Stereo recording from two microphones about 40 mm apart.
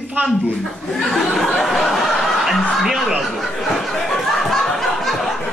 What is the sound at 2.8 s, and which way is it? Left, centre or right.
Speech, centre.